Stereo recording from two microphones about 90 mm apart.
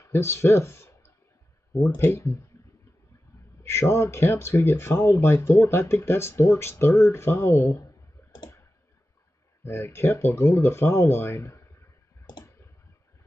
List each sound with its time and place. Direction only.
0.0 s speech: 30° left (ahead or behind)
3.6 s speech: 30° left (ahead or behind)
8.2 s clicking: 35° left (ahead or behind)
9.7 s speech: 30° left (ahead or behind)